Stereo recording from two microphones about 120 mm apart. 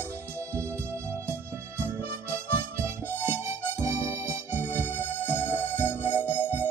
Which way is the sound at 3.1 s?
20° right (ahead or behind).